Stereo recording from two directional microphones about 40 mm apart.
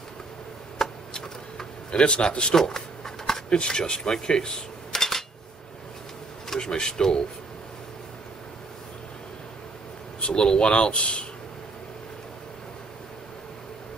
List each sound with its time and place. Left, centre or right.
0.7 s a sound: centre
1.9 s speech: left
2.5 s speech: centre
3.3 s a sound: centre
3.5 s cutlery: left
6.5 s speech: centre
10.2 s speech: left